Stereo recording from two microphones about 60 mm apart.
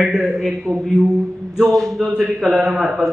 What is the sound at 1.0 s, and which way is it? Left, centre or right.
Mantra, right.